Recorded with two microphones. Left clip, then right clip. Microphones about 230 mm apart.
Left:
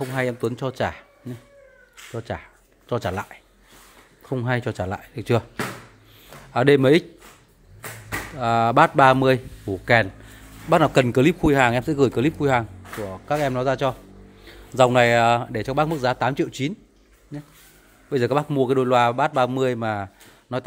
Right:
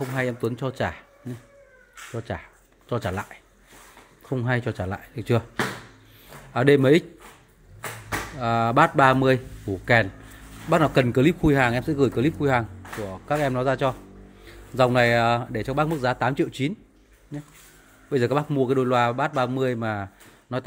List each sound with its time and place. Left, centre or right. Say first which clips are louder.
0.0 s a man's voice: left 2 dB; centre
2.1 s a man's voice: left 2 dB; centre
6.5 s a man's voice: left 2 dB; centre
8.4 s a man's voice: left 3 dB; centre
12.9 s a man's voice: left 1 dB; centre
14.5 s a man's voice: left 4 dB; centre
18.1 s a man's voice: left 2 dB; centre